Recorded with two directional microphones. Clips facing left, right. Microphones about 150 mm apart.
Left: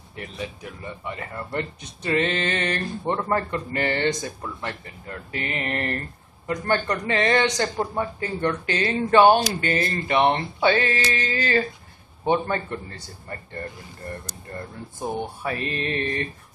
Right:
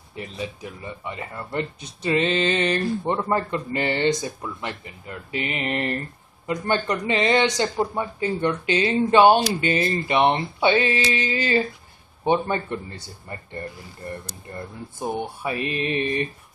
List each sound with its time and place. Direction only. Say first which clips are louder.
1.0 s speech: left 1 dB; 25° right (ahead or behind)
8.0 s speech: right 1 dB; 20° right (ahead or behind)
15.0 s speech: right 1 dB; 15° right (ahead or behind)